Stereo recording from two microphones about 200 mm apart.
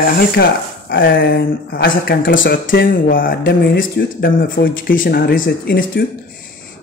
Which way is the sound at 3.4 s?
60° left (ahead or behind).